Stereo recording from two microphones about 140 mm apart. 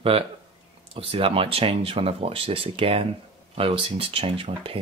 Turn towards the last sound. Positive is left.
turn(degrees=-40)  # may be behind; listen again after turning